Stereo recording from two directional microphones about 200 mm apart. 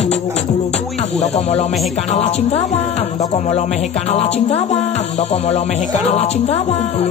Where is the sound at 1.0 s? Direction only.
30° left (ahead or behind).